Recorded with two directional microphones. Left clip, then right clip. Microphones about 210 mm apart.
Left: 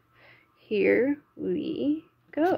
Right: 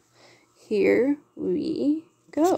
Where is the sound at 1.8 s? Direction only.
20° right (ahead or behind).